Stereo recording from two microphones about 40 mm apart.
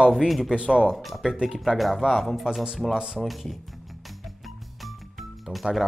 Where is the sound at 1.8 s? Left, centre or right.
Centre.